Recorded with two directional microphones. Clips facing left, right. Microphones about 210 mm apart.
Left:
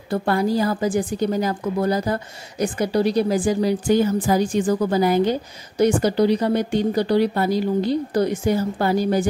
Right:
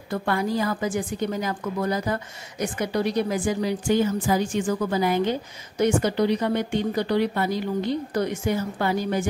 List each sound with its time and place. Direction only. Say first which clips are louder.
0.1 s a woman's voice: left 5 dB; 35° left (ahead or behind)